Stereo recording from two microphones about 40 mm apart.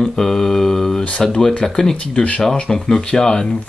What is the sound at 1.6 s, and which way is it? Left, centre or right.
Speech, centre.